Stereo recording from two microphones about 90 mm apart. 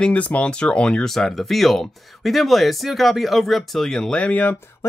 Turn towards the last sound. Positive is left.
turn(degrees=15)  # may be behind; listen again after turning